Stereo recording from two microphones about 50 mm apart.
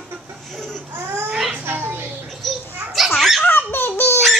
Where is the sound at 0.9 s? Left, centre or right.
Right.